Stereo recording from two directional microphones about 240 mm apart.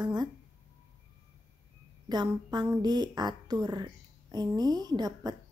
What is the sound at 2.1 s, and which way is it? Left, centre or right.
A woman's voice, centre.